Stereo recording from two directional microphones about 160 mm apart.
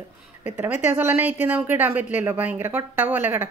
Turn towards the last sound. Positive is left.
turn(degrees=-15)  # may be behind; listen again after turning